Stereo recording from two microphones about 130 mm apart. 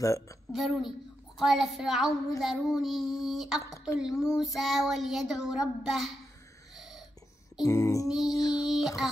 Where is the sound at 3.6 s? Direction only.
25° left (ahead or behind).